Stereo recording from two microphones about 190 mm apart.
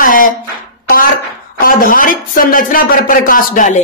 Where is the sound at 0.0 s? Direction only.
45° left (ahead or behind).